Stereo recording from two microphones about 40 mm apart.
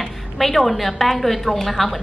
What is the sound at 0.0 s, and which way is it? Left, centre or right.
A woman's voice, centre.